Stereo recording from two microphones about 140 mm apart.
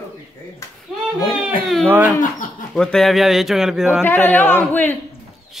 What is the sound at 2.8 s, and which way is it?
Speech, 5° left (ahead or behind).